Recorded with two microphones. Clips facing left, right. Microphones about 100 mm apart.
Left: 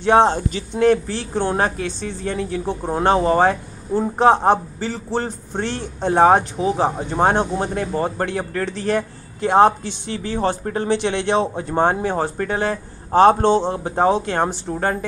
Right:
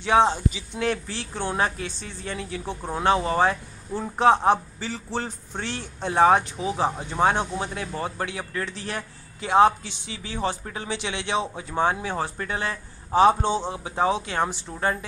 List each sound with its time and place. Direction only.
0.0 s a man's voice: 55° left (ahead or behind)
3.9 s a man's voice: 15° left (ahead or behind)
4.5 s a man's voice: 50° left (ahead or behind)
6.6 s speech: 35° left (ahead or behind)
7.0 s a man's voice: 50° left (ahead or behind)